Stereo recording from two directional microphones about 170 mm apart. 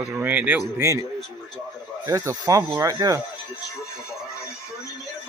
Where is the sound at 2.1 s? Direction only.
20° right (ahead or behind).